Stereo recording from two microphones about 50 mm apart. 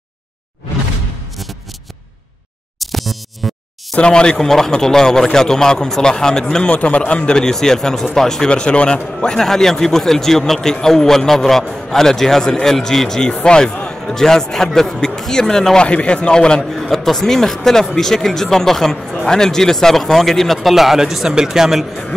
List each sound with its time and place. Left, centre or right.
2.8 s music: centre
3.9 s speech: centre
9.4 s speech: centre
15.8 s a man's voice: left; by 21.8 s centre